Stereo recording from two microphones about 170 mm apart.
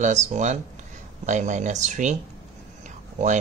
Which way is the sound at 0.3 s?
45° right (ahead or behind).